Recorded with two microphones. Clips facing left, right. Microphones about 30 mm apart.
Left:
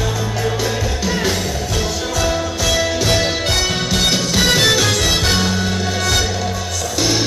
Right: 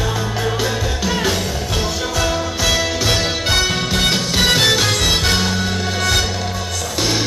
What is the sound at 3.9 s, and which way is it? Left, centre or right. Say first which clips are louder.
Music: even; right.